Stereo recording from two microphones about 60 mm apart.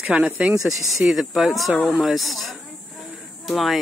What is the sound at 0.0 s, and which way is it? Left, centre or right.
Speech, right.